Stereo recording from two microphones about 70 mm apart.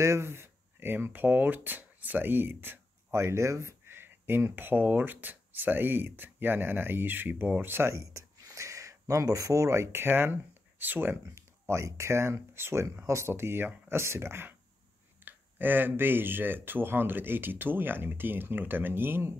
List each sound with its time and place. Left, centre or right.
0.0 s speech: right
7.9 s a sound: right
9.9 s speech: right
11.3 s speech: right